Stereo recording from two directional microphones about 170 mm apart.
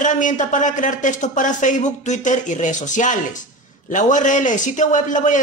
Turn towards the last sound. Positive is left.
turn(degrees=45)  # may be behind; listen again after turning